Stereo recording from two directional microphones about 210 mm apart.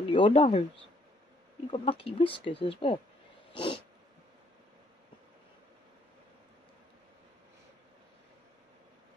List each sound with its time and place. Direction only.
0.1 s speech: 25° left (ahead or behind)
1.7 s speech: 25° left (ahead or behind)
3.5 s cat: 25° left (ahead or behind)